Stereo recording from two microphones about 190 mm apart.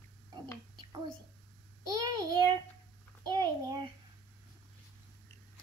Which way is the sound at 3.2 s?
20° right (ahead or behind).